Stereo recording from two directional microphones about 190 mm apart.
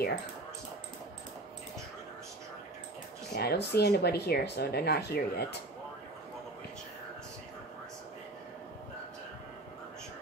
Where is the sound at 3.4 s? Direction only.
55° left (ahead or behind).